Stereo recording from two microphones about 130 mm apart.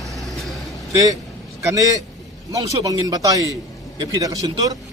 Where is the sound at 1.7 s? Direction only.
25° right (ahead or behind).